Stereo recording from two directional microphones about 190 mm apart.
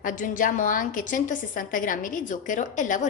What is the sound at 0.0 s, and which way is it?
A woman's voice, 45° left (ahead or behind).